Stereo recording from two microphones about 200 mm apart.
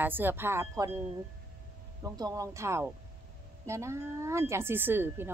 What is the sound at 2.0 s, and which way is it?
Speech, 20° right (ahead or behind).